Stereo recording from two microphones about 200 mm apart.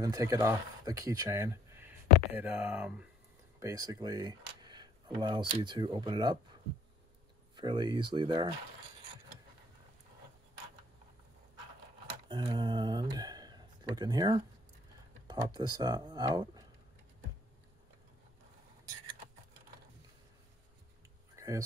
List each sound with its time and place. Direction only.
0.0 s speech: 15° right (ahead or behind)
7.5 s speech: 20° right (ahead or behind)
12.3 s speech: 25° right (ahead or behind)
21.4 s a sound: 15° right (ahead or behind)